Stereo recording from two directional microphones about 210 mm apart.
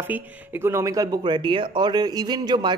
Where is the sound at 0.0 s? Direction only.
10° right (ahead or behind).